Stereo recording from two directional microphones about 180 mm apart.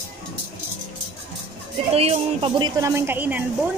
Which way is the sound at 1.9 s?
35° right (ahead or behind).